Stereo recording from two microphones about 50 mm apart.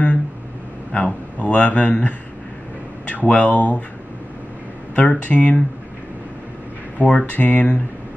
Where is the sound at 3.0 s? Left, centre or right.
Left.